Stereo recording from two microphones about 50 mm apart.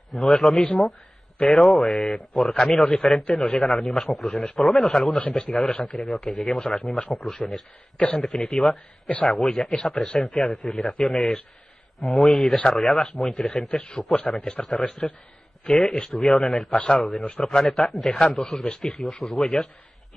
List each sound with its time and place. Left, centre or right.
0.1 s speech: centre
3.3 s speech: centre
3.5 s speech: centre
4.9 s a man's voice: centre
5.3 s speech: centre
5.7 s a man's voice: left
5.9 s speech: centre
9.5 s speech: centre
10.1 s speech: centre
13.5 s a man's voice: left
14.3 s speech: centre
16.7 s a man's voice: left
17.4 s a man's voice: centre
19.2 s speech: centre